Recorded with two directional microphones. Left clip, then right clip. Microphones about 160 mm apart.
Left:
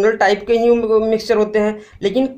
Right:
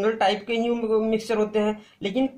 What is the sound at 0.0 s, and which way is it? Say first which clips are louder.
Speech: left 8 dB; 45° left (ahead or behind).